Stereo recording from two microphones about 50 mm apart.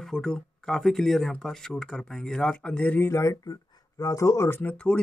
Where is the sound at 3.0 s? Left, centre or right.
Left.